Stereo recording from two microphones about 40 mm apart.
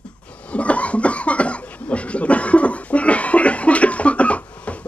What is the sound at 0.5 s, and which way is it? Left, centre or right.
Cough, left.